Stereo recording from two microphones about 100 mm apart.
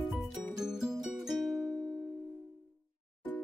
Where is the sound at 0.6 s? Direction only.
5° right (ahead or behind).